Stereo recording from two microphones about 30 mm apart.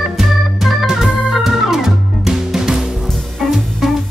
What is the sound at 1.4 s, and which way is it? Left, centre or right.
Music, centre.